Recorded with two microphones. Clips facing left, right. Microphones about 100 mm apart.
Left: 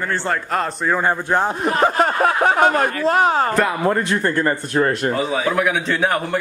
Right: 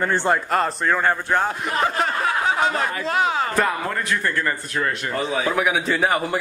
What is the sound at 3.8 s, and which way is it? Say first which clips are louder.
Speech: left 6 dB; 25° left (ahead or behind).